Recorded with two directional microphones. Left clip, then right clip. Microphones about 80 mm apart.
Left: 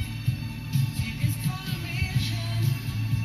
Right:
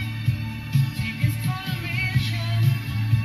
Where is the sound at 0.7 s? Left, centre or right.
Left.